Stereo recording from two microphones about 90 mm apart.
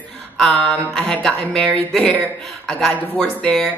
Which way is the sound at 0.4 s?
5° left (ahead or behind).